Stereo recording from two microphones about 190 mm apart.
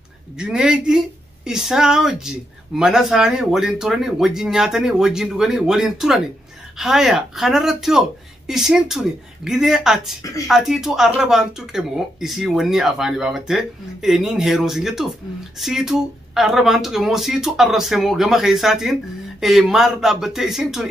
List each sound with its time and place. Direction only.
0.4 s a woman's voice: 5° right (ahead or behind)
10.2 s speech: 15° left (ahead or behind)
10.5 s a woman's voice: centre (ahead or behind)